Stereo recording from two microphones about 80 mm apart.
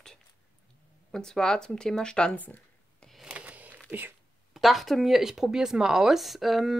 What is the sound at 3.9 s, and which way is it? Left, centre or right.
Speech, right.